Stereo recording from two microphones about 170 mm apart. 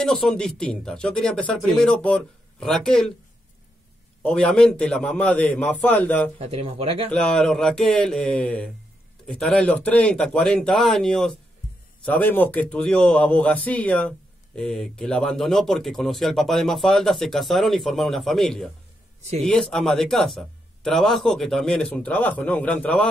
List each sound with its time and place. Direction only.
0.0 s speech: 5° left (ahead or behind)
4.2 s a man's voice: 5° left (ahead or behind)
6.3 s speech: 35° right (ahead or behind)
7.1 s speech: 5° left (ahead or behind)